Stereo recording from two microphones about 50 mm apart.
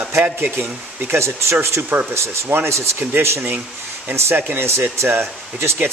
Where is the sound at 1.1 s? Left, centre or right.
Right.